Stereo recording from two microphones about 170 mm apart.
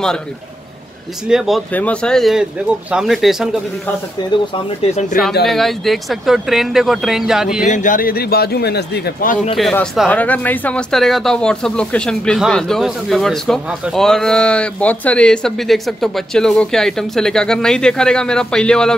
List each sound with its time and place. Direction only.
1.2 s speech: centre (ahead or behind)
1.7 s speech: 10° left (ahead or behind)
4.2 s speech: 25° left (ahead or behind)
5.5 s speech: centre (ahead or behind)
7.6 s speech: 45° left (ahead or behind)
9.6 s speech: centre (ahead or behind)